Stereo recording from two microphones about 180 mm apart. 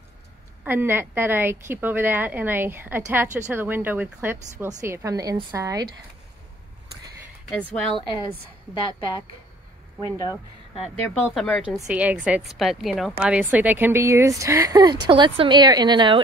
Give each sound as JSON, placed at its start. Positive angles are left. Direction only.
{"t": 0.7, "sound": "a woman's voice", "side_deg": -10}
{"t": 7.4, "sound": "speech", "side_deg": 5}
{"t": 8.8, "sound": "speech", "side_deg": 30}
{"t": 10.8, "sound": "speech", "side_deg": 0}
{"t": 11.9, "sound": "a woman's voice", "side_deg": -5}